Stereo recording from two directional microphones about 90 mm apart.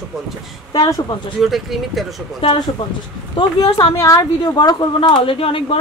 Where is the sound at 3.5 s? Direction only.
50° left (ahead or behind).